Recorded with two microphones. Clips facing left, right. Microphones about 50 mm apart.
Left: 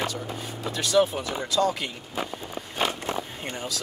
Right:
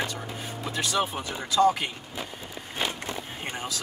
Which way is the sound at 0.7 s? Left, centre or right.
Centre.